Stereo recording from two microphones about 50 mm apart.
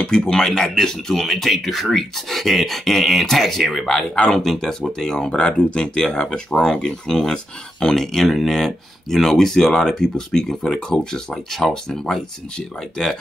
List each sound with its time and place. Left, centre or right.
0.3 s speech: centre
5.3 s speech: centre